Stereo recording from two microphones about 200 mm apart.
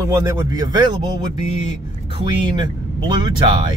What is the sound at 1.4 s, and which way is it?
Speech, 35° left (ahead or behind).